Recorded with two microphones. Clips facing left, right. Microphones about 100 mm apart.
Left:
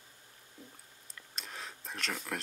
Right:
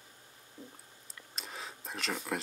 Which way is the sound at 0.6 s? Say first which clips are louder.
Right 4 dB; 25° right (ahead or behind).